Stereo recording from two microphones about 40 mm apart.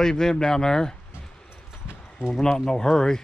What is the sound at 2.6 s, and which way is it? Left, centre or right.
Speech, centre.